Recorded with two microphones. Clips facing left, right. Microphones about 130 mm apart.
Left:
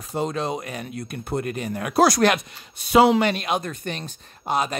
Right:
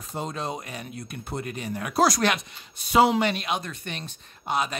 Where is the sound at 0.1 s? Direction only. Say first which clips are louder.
Left 6 dB; 80° left.